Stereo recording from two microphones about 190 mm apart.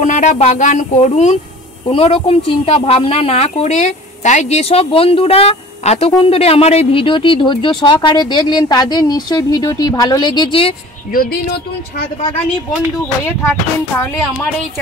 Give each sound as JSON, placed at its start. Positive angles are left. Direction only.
{"t": 0.0, "sound": "speech", "side_deg": 40}
{"t": 11.1, "sound": "speech", "side_deg": 50}
{"t": 13.0, "sound": "speech", "side_deg": 10}